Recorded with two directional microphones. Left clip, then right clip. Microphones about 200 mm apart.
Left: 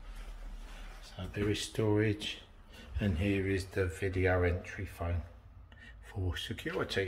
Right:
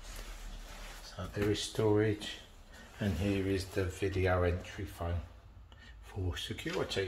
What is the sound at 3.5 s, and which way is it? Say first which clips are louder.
Speech: left 1 dB; 5° left (ahead or behind).